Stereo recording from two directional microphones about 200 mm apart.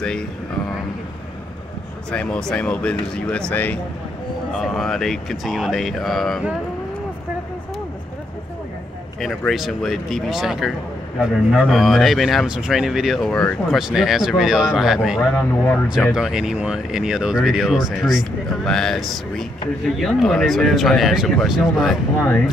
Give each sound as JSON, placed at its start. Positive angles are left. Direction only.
{"t": 0.0, "sound": "speech", "side_deg": 5}
{"t": 2.0, "sound": "speech", "side_deg": 5}
{"t": 9.2, "sound": "speech", "side_deg": 0}